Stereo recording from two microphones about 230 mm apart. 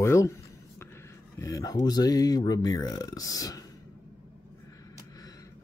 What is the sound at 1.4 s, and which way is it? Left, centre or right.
Speech, centre.